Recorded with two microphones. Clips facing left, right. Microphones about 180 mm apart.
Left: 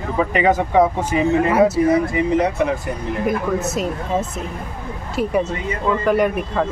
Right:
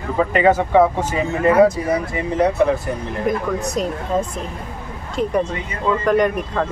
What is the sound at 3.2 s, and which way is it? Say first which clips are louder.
Speech: even; 5° left (ahead or behind).